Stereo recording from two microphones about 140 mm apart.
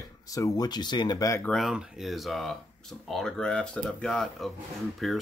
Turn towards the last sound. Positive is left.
turn(degrees=0)  # may be behind; listen again after turning